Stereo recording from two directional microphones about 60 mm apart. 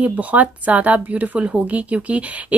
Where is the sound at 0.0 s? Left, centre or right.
Right.